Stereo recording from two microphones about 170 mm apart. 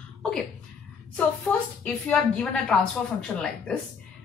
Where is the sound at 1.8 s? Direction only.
10° left (ahead or behind).